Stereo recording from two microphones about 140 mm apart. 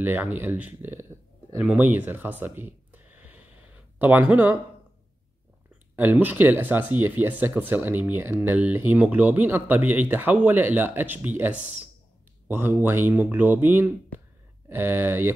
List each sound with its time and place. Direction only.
0.0 s speech: 15° right (ahead or behind)
1.6 s a sound: 10° right (ahead or behind)
5.9 s speech: 15° right (ahead or behind)